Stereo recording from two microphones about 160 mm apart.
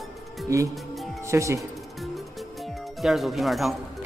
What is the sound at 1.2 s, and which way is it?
Speech, 20° right (ahead or behind).